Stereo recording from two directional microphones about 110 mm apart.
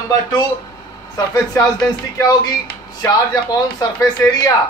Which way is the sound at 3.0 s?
35° left (ahead or behind).